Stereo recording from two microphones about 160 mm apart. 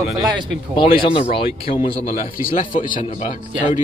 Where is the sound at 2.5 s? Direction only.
55° left (ahead or behind).